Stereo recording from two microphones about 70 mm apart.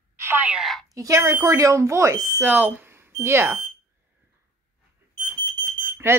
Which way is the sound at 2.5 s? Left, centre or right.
Right.